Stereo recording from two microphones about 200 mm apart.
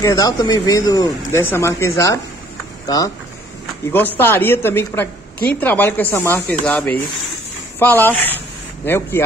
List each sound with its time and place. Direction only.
0.0 s speech: 15° left (ahead or behind)
3.9 s speech: 10° left (ahead or behind)